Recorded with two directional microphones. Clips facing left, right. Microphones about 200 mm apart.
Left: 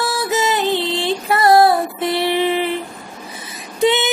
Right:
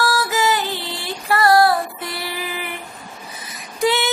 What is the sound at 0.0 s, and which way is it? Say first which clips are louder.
Female singing: left 1 dB; 25° left (ahead or behind).